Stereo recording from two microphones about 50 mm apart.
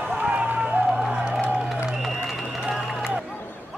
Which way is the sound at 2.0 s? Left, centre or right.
Centre.